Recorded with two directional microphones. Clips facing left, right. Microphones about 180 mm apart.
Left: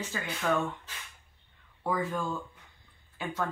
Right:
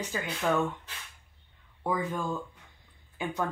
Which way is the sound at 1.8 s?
20° right (ahead or behind).